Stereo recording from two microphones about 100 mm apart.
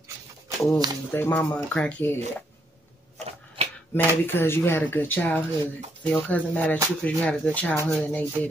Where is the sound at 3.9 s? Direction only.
20° left (ahead or behind).